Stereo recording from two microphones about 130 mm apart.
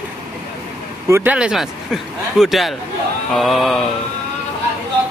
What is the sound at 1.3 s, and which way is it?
Speech, 5° right (ahead or behind).